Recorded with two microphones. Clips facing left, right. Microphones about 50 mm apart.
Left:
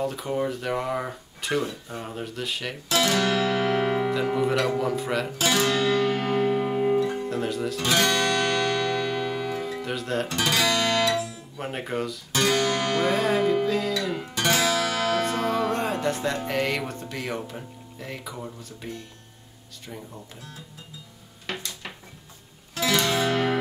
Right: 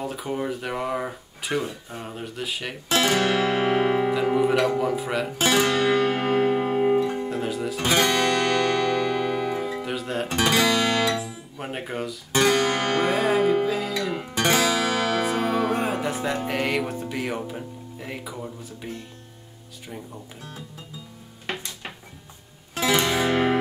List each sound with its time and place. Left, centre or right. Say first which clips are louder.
0.0 s speech: left 2 dB; centre
2.9 s music: right 2 dB; right
4.1 s speech: right 3 dB; centre
5.4 s music: right 3 dB; right; by 7.8 s centre
7.8 s music: right 2 dB; right
10.2 s speech: right 5 dB; right; by 12.2 s centre
12.3 s music: right 3 dB; right
13.1 s speech: right 2 dB; centre
13.9 s music: right 2 dB; centre
15.2 s music: right 1 dB; centre
21.5 s music: right 2 dB; right
22.8 s music: right 2 dB; right